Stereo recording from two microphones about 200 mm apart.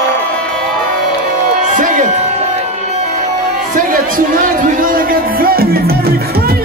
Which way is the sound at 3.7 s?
40° right (ahead or behind).